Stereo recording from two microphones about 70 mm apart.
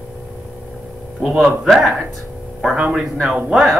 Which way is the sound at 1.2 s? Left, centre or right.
Centre.